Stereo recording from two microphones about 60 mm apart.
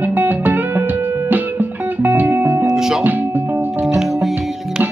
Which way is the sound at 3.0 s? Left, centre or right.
Right.